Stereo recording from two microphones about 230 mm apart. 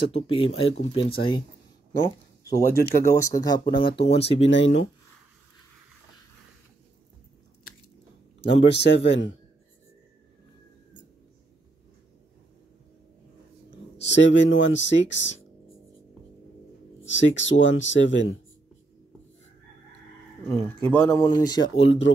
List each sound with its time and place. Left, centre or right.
0.1 s speech: left
4.4 s speech: left
8.5 s speech: left
13.9 s speech: left
17.0 s speech: left
20.4 s speech: centre